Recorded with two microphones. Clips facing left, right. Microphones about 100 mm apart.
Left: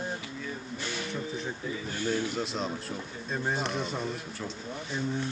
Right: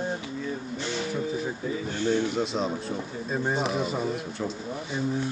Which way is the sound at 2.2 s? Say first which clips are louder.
Right 5 dB; centre (ahead or behind).